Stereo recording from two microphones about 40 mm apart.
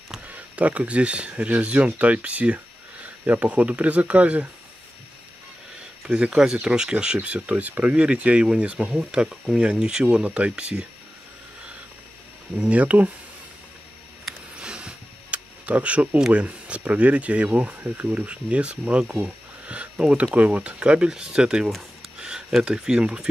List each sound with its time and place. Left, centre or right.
0.3 s speech: right
6.1 s speech: centre
12.5 s speech: right
14.6 s a sound: right
15.6 s speech: right
17.7 s speech: right
18.2 s speech: right
20.8 s speech: right